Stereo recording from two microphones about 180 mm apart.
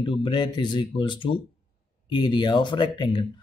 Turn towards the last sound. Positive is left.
turn(degrees=25)  # may be behind; listen again after turning